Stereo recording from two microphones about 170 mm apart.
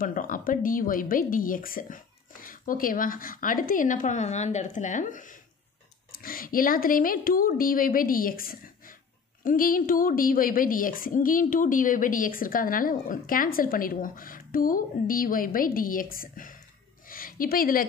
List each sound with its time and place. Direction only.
0.0 s a woman's voice: 55° left (ahead or behind)